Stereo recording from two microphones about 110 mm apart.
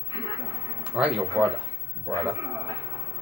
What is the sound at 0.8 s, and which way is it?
Speech, 10° right (ahead or behind).